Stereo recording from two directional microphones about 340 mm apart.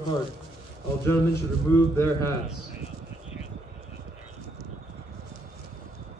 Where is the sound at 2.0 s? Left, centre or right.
Centre.